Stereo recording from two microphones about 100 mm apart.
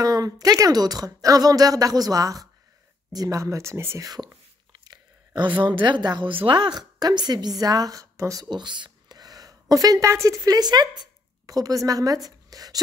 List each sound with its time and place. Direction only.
0.0 s a woman's voice: 35° right (ahead or behind)
4.7 s a woman's voice: 45° right (ahead or behind)
8.5 s speech: 50° right (ahead or behind)